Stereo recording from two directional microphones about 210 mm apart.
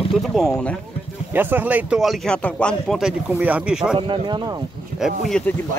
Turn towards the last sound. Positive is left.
turn(degrees=0)  # may be behind; listen again after turning